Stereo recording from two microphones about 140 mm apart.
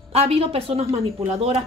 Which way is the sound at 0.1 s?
45° right (ahead or behind).